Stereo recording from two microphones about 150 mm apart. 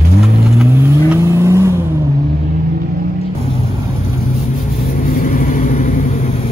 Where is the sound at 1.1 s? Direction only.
20° right (ahead or behind).